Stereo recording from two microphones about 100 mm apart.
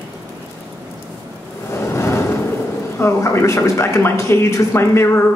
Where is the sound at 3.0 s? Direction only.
30° left (ahead or behind).